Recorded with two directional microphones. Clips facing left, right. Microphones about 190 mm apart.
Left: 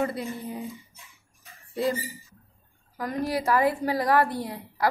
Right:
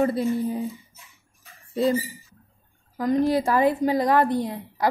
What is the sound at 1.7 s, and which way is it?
Speech, 25° right (ahead or behind).